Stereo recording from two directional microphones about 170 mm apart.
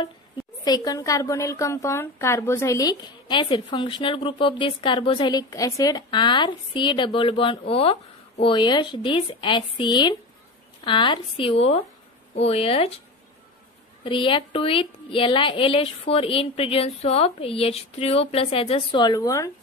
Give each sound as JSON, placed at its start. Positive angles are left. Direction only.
{"t": 0.7, "sound": "a woman's voice", "side_deg": 25}
{"t": 14.0, "sound": "a woman's voice", "side_deg": 30}